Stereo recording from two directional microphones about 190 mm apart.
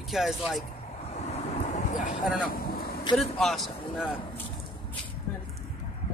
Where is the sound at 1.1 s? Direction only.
35° left (ahead or behind).